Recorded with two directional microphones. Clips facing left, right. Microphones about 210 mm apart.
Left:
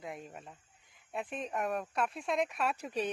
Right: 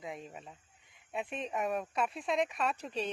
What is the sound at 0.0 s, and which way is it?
A man's voice, centre (ahead or behind).